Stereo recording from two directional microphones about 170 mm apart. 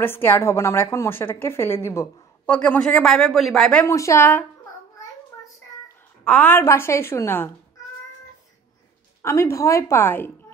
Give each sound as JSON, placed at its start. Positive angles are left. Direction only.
{"t": 0.0, "sound": "a woman's voice", "side_deg": 15}
{"t": 3.8, "sound": "a woman's voice", "side_deg": 15}
{"t": 6.2, "sound": "a woman's voice", "side_deg": 10}
{"t": 9.2, "sound": "a woman's voice", "side_deg": 15}